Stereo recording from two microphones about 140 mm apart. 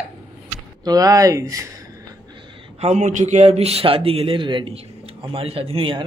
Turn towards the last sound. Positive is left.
turn(degrees=-40)  # may be behind; listen again after turning